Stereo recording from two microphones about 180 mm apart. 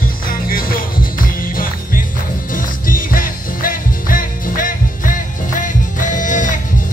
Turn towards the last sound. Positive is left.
turn(degrees=45)  # may be behind; listen again after turning